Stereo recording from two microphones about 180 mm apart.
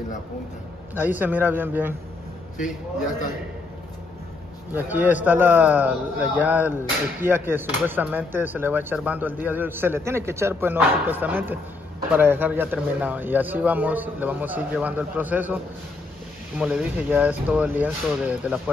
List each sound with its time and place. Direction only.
0.9 s speech: 10° right (ahead or behind)
2.5 s a man's voice: 45° left (ahead or behind)
4.7 s speech: 10° right (ahead or behind)